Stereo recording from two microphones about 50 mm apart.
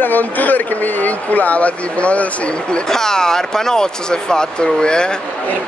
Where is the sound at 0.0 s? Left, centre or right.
Left.